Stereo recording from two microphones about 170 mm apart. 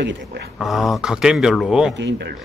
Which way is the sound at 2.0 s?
90° right.